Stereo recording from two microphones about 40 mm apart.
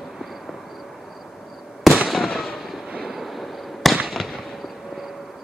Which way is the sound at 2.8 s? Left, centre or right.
Centre.